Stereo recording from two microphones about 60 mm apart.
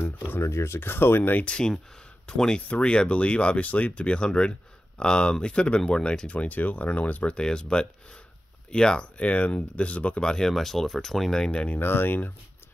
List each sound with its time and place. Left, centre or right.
0.4 s speech: left
1.4 s speech: centre
6.3 s speech: left
11.7 s speech: left